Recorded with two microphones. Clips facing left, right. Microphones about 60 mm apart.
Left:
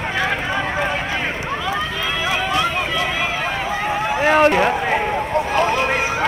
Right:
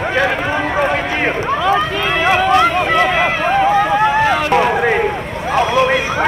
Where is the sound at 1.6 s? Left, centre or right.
Right.